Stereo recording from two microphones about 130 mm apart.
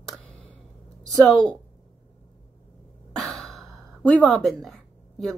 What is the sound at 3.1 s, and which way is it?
Speech, centre (ahead or behind).